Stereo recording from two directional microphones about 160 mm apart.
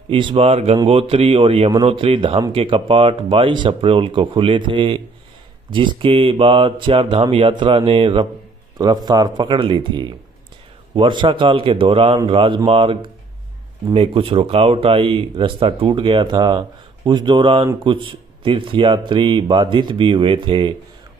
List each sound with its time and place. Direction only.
0.1 s speech: 35° right (ahead or behind)